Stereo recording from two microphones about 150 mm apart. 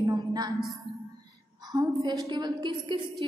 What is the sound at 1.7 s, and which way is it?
A woman's voice, 25° right (ahead or behind).